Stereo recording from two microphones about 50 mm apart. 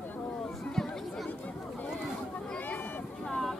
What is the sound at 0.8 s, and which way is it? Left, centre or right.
Chatter, centre.